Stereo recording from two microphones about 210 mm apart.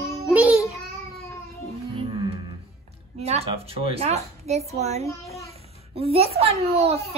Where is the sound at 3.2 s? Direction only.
30° right (ahead or behind).